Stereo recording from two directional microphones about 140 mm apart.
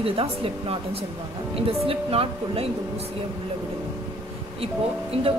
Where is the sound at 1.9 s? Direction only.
45° right (ahead or behind).